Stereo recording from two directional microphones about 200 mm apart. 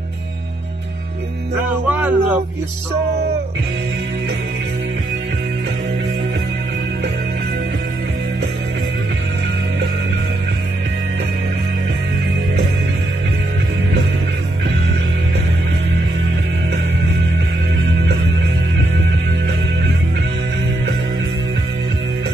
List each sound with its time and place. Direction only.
1.9 s music: 5° right (ahead or behind)